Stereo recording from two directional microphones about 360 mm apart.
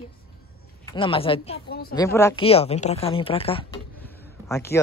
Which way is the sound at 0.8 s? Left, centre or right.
Centre.